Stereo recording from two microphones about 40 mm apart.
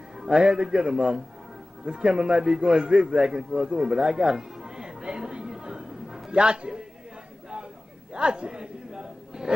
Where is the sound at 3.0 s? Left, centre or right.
Centre.